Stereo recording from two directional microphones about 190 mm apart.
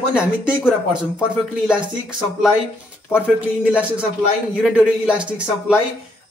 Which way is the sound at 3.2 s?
5° right (ahead or behind).